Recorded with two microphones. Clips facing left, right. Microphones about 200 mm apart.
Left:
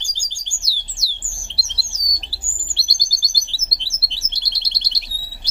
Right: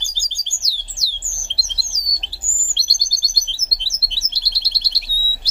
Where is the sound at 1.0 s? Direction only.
20° left (ahead or behind).